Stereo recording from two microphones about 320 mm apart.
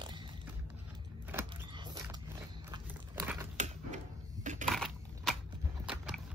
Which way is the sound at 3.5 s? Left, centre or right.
Right.